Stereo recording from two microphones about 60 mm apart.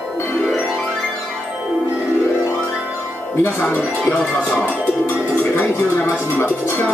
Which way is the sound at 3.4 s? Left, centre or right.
Left.